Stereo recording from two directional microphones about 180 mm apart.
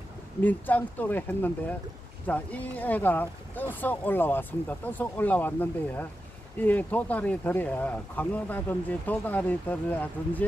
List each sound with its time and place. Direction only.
0.4 s speech: 10° left (ahead or behind)